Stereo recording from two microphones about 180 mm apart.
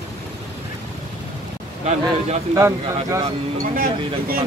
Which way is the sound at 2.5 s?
15° right (ahead or behind).